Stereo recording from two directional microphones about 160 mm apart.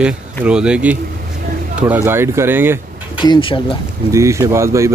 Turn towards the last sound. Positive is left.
turn(degrees=-20)  # may be behind; listen again after turning